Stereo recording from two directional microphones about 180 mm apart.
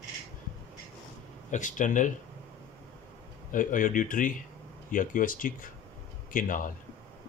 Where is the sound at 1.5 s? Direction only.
45° left (ahead or behind).